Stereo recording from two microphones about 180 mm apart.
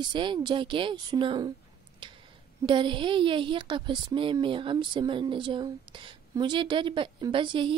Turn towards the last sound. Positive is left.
turn(degrees=-25)  # may be behind; listen again after turning